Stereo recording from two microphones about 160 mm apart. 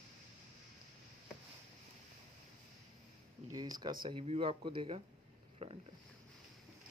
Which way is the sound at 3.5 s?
25° right (ahead or behind).